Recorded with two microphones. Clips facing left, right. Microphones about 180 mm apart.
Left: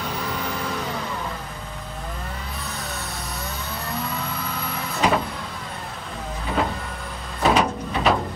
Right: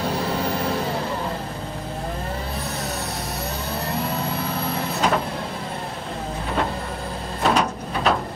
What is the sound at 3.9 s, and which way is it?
Vehicle, 30° right (ahead or behind).